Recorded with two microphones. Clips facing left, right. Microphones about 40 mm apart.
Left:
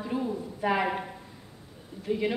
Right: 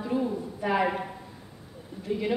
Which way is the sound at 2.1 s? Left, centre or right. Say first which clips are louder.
Left 1 dB; centre.